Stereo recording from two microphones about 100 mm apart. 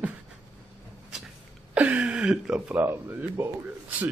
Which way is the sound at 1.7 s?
15° right (ahead or behind).